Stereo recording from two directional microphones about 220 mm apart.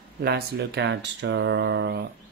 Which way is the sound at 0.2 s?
45° right (ahead or behind).